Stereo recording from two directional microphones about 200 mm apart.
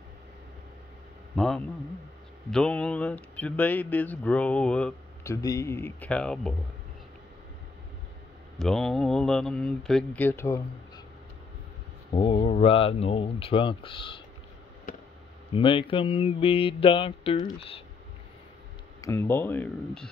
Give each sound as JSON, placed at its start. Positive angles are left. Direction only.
{"t": 1.3, "sound": "a man's voice", "side_deg": 5}
{"t": 5.3, "sound": "speech", "side_deg": 15}
{"t": 8.5, "sound": "speech", "side_deg": 5}
{"t": 12.1, "sound": "speech", "side_deg": 25}
{"t": 14.9, "sound": "a sound", "side_deg": 45}
{"t": 15.5, "sound": "speech", "side_deg": 25}
{"t": 18.9, "sound": "speech", "side_deg": 15}